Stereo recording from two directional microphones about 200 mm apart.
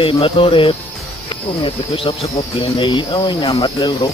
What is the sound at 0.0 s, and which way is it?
Speech, 25° left (ahead or behind).